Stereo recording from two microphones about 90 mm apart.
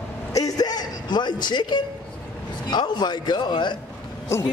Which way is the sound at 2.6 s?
55° left (ahead or behind).